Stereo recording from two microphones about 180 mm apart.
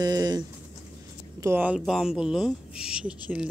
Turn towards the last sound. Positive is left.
turn(degrees=-5)  # may be behind; listen again after turning